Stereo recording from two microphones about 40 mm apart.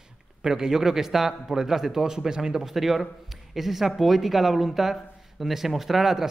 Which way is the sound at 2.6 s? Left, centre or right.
Centre.